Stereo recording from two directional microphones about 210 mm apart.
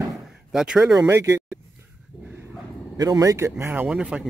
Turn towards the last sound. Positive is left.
turn(degrees=-5)  # may be behind; listen again after turning